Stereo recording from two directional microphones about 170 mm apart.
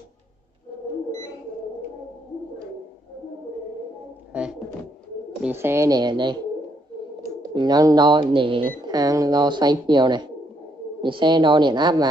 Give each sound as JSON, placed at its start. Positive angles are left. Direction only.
{"t": 4.3, "sound": "a sound", "side_deg": -5}
{"t": 5.4, "sound": "speech", "side_deg": -15}
{"t": 7.5, "sound": "speech", "side_deg": -25}